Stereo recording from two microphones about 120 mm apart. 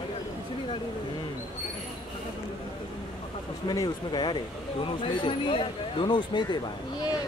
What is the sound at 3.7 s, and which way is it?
Speech, 35° left (ahead or behind).